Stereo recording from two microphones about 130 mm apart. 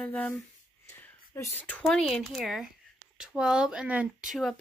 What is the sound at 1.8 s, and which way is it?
Speech, centre (ahead or behind).